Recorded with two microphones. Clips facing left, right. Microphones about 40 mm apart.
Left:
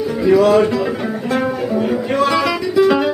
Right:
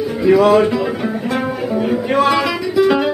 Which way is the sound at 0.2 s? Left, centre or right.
Centre.